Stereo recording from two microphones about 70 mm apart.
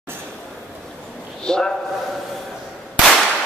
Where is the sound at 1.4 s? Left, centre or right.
Centre.